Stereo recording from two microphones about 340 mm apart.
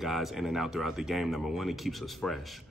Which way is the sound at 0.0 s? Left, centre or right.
Centre.